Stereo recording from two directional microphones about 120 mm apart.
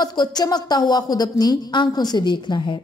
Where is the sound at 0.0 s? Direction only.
35° left (ahead or behind).